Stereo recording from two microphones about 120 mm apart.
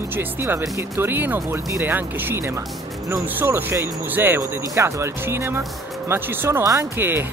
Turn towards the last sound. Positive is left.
turn(degrees=-20)  # may be behind; listen again after turning